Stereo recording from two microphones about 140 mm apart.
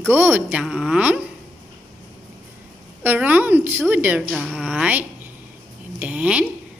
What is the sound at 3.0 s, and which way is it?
A woman's voice, 10° right (ahead or behind).